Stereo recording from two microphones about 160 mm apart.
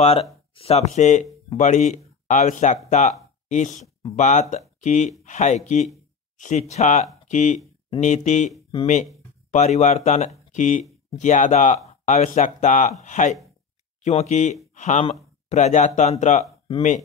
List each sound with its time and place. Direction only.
0.0 s speech: 40° left (ahead or behind)